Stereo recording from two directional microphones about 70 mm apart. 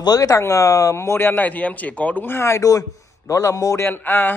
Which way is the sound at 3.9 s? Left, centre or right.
Left.